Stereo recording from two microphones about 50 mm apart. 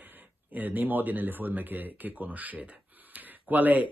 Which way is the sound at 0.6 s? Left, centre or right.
Right.